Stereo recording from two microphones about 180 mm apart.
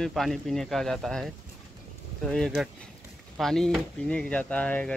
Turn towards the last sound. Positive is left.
turn(degrees=5)  # may be behind; listen again after turning